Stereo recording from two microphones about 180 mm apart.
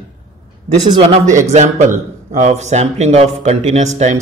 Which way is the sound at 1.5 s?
40° right (ahead or behind).